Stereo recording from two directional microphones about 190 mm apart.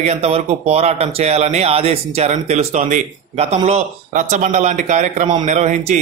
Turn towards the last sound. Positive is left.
turn(degrees=-40)  # may be behind; listen again after turning